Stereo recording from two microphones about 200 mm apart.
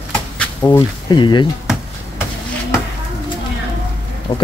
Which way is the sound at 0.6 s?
25° left (ahead or behind).